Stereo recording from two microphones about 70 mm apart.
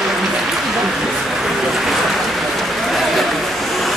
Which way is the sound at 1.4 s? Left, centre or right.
Centre.